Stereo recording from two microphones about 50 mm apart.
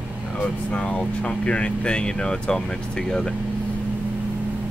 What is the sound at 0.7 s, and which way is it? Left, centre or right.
Speech, left.